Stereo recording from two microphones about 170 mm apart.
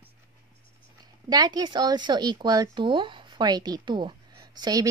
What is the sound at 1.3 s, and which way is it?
A woman's voice, 25° right (ahead or behind).